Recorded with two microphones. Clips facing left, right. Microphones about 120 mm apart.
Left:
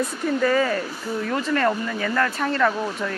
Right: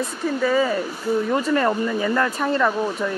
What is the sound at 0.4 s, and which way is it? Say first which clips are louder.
Speech: right 1 dB; 10° right (ahead or behind).